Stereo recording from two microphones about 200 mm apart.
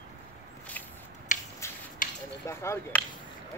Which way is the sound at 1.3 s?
40° left (ahead or behind).